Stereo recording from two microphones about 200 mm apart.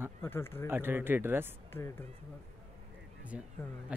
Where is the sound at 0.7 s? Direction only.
10° right (ahead or behind).